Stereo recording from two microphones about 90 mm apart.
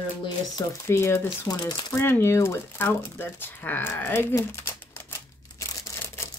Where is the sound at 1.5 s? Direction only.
50° left (ahead or behind).